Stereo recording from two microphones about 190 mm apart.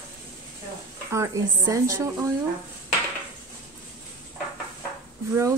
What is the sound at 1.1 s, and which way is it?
Speech, 15° right (ahead or behind).